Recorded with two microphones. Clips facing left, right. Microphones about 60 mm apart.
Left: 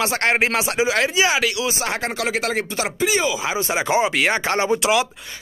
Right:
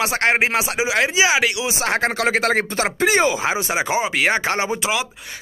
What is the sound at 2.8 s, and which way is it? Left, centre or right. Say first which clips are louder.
Speech: right 3 dB; right.